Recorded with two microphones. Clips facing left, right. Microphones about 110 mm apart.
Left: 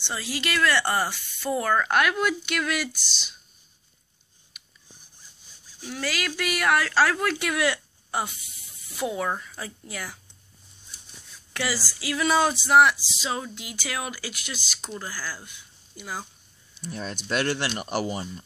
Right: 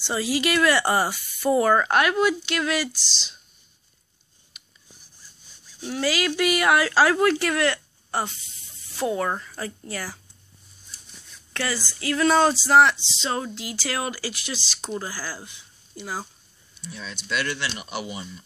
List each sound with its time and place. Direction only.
0.1 s speech: 5° right (ahead or behind)
5.9 s speech: 5° right (ahead or behind)
11.5 s a woman's voice: 10° left (ahead or behind)
12.0 s a sound: 10° left (ahead or behind)
12.6 s speech: 5° left (ahead or behind)
12.9 s speech: 25° right (ahead or behind)
13.2 s speech: 5° left (ahead or behind)
16.8 s speech: 50° left (ahead or behind)